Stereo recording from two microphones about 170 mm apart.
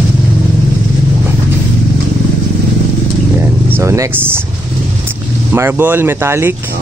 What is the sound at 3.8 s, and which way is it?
Speech, 15° right (ahead or behind).